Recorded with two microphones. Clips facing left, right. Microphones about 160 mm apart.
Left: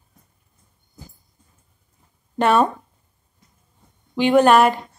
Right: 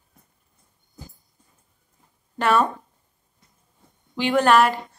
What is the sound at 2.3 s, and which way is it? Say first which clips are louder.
Speech: left 3 dB; 25° left (ahead or behind).